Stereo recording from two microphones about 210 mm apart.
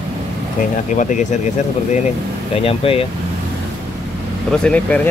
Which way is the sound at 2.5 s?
25° left (ahead or behind).